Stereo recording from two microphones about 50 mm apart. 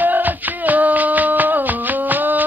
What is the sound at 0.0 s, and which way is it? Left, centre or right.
Music, right.